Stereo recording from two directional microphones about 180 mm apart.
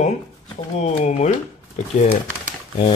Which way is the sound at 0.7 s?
40° left (ahead or behind).